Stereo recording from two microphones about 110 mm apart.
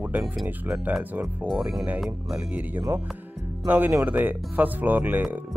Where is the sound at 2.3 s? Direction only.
15° right (ahead or behind).